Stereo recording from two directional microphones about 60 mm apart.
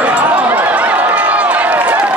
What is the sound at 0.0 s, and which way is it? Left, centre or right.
Run, right.